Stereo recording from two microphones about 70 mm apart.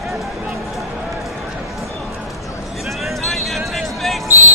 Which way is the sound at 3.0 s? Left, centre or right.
Centre.